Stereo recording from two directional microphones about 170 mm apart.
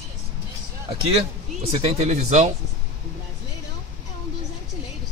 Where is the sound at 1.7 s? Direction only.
40° right (ahead or behind).